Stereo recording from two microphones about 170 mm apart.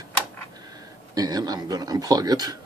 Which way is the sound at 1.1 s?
20° right (ahead or behind).